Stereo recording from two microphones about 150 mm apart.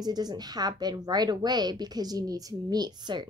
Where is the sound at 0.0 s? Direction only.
25° right (ahead or behind).